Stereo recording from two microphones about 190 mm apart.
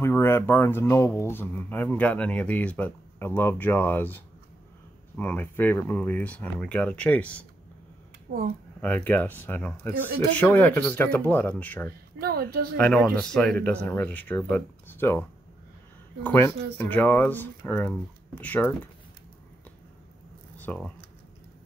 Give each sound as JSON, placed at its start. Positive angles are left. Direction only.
{"t": 0.0, "sound": "speech", "side_deg": 15}
{"t": 8.3, "sound": "a woman's voice", "side_deg": -50}
{"t": 8.8, "sound": "speech", "side_deg": 10}
{"t": 12.2, "sound": "a woman's voice", "side_deg": -55}
{"t": 12.7, "sound": "speech", "side_deg": 5}
{"t": 20.5, "sound": "speech", "side_deg": 5}